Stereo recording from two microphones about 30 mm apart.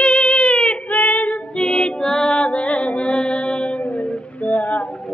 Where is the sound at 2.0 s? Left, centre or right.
Left.